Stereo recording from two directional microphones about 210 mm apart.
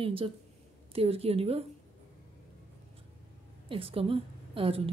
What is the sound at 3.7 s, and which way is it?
A woman's voice, 25° right (ahead or behind).